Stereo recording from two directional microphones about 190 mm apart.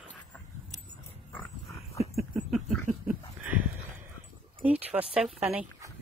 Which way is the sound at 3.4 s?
10° right (ahead or behind).